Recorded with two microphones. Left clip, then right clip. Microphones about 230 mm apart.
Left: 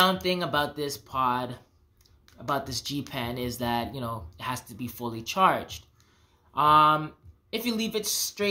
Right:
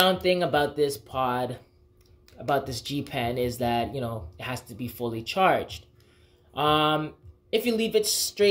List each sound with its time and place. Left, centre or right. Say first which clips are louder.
0.0 s speech: right 2 dB; centre